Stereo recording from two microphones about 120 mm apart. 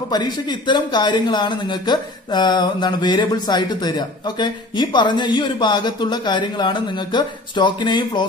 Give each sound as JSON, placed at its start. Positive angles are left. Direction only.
{"t": 0.1, "sound": "a man's voice", "side_deg": 35}